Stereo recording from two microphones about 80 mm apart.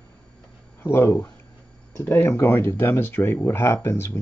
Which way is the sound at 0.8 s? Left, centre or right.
Left.